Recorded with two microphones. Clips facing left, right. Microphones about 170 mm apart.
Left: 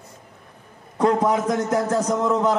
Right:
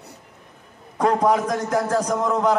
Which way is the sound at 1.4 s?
25° left (ahead or behind).